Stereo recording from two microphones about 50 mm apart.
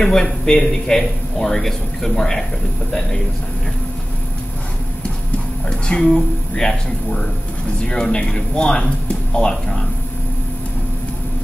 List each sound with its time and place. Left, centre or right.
0.0 s a man's voice: centre
5.7 s a man's voice: centre